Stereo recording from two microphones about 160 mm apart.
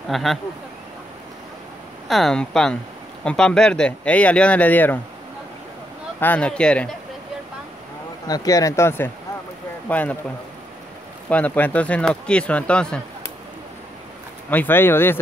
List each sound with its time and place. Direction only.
0.1 s speech: centre (ahead or behind)
2.0 s speech: centre (ahead or behind)
6.1 s speech: 10° left (ahead or behind)
8.3 s a man's voice: 20° left (ahead or behind)
11.2 s speech: 10° left (ahead or behind)
14.5 s speech: 10° left (ahead or behind)